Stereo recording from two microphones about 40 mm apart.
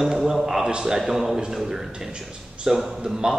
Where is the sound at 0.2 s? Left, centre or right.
Centre.